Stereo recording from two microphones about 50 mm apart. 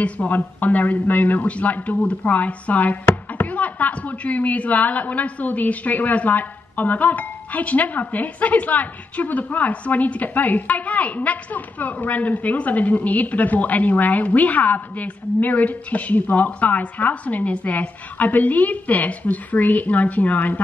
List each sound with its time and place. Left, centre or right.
0.0 s speech: left